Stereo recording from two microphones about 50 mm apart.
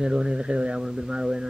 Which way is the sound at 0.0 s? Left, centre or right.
Centre.